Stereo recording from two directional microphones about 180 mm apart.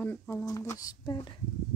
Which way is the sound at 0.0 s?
10° left (ahead or behind).